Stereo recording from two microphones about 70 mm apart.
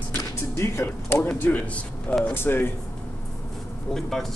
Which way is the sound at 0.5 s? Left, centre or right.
Left.